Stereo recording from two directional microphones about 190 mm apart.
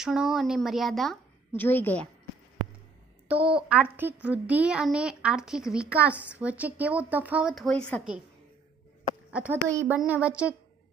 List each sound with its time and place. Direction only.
0.0 s a woman's voice: centre (ahead or behind)
3.3 s a woman's voice: 5° right (ahead or behind)
9.3 s a woman's voice: 10° right (ahead or behind)